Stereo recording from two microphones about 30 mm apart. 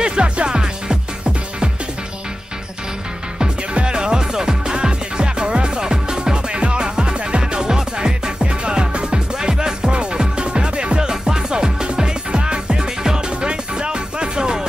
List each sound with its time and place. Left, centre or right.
0.0 s music: right
3.7 s music: right